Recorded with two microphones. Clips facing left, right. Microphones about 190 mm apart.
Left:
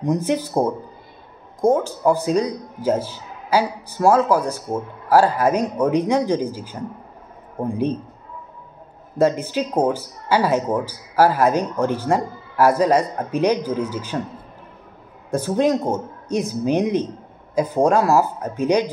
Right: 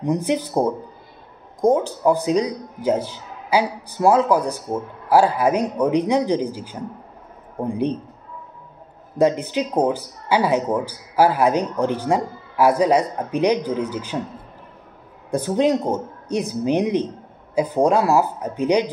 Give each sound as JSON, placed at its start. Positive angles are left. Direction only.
{"t": 0.0, "sound": "speech", "side_deg": -15}
{"t": 9.2, "sound": "speech", "side_deg": -15}
{"t": 15.3, "sound": "speech", "side_deg": -15}